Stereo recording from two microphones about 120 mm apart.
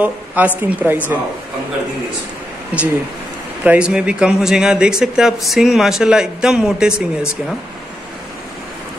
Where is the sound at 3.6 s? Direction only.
10° right (ahead or behind).